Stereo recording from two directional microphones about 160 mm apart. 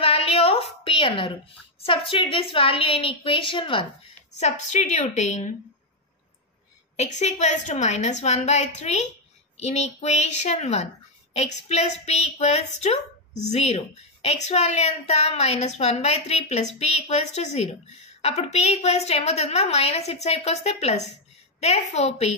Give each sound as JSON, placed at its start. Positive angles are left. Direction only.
{"t": 0.0, "sound": "a sound", "side_deg": 40}
{"t": 1.8, "sound": "a woman's voice", "side_deg": 35}
{"t": 4.4, "sound": "a woman's voice", "side_deg": 45}
{"t": 7.0, "sound": "a woman's voice", "side_deg": 45}